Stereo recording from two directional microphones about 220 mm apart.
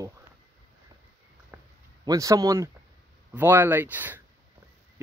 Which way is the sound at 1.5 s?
10° right (ahead or behind).